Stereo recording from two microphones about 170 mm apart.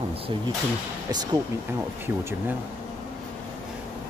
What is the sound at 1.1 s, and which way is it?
Speech, 25° right (ahead or behind).